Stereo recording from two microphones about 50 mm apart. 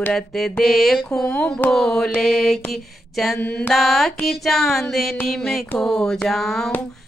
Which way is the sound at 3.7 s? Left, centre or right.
Centre.